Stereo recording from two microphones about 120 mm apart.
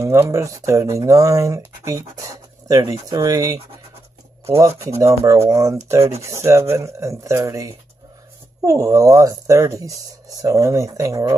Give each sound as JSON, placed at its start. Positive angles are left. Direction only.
{"t": 0.0, "sound": "speech", "side_deg": -25}